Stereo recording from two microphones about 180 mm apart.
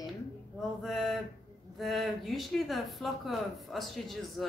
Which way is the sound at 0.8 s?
Centre (ahead or behind).